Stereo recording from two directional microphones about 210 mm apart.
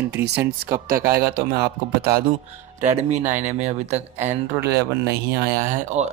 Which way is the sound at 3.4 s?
35° right (ahead or behind).